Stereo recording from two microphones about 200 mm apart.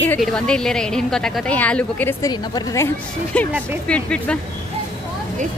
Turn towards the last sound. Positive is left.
turn(degrees=5)  # may be behind; listen again after turning